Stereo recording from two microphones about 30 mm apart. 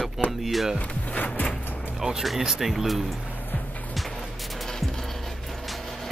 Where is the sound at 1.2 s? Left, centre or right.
Left.